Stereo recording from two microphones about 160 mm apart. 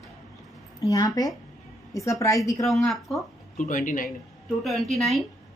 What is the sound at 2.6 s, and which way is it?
Speech, centre (ahead or behind).